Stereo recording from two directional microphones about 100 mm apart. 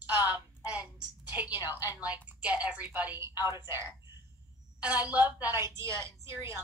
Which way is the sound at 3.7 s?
30° right (ahead or behind).